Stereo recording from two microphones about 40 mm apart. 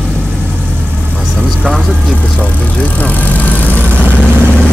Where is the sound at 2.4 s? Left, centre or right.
Left.